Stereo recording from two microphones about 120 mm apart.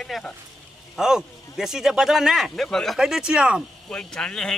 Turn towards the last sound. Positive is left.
turn(degrees=5)  # may be behind; listen again after turning